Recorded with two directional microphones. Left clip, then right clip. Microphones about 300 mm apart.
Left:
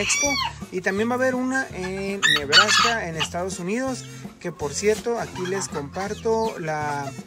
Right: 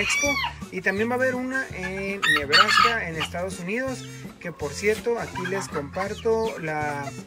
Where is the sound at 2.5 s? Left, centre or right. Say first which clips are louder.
Left 1 dB; centre.